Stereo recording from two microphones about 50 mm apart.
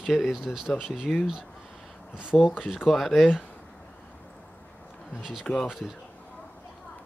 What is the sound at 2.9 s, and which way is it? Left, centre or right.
Speech, centre.